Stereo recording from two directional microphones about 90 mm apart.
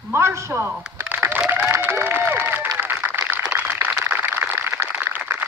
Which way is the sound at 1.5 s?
20° right (ahead or behind).